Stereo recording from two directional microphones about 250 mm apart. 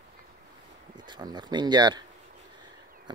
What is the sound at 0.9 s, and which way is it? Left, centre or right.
Speech, centre.